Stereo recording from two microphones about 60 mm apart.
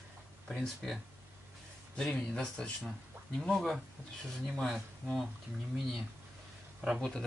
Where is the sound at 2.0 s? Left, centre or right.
Left.